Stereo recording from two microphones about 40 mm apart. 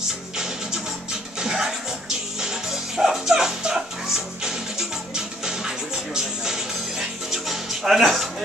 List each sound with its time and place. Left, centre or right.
1.4 s music: centre